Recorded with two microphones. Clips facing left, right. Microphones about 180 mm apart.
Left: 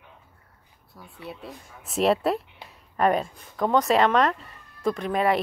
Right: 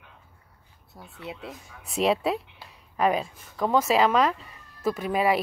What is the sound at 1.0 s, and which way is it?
Speech, 30° right (ahead or behind).